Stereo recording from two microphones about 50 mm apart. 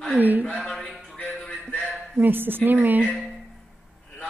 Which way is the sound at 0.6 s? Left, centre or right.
Centre.